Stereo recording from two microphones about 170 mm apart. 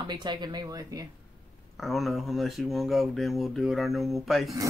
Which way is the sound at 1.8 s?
Centre (ahead or behind).